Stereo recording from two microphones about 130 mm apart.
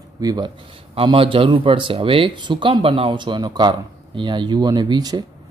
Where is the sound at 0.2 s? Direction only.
30° right (ahead or behind).